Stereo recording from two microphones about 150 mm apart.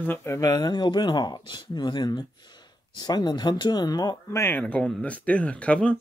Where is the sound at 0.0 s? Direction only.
15° left (ahead or behind).